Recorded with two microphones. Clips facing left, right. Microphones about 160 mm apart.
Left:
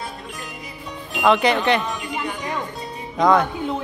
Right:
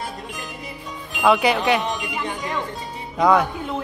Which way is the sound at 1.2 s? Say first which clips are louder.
Even; 10° right (ahead or behind).